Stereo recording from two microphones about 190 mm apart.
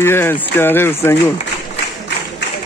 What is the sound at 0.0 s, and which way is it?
Speech, 10° left (ahead or behind).